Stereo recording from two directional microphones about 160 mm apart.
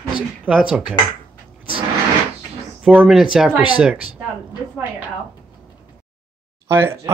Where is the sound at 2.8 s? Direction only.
5° right (ahead or behind).